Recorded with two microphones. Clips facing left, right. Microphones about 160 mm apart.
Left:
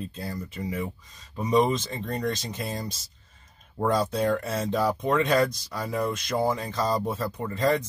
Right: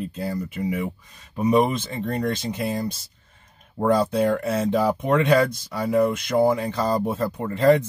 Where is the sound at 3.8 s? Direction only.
15° right (ahead or behind).